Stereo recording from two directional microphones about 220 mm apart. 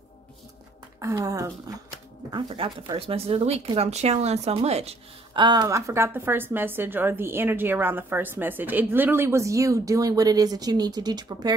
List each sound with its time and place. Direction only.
0.9 s a woman's voice: 15° right (ahead or behind)